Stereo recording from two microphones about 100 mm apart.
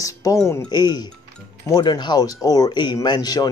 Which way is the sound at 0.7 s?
45° left (ahead or behind).